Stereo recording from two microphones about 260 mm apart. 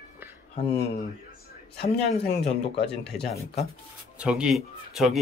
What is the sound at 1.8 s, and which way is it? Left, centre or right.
Speech, left.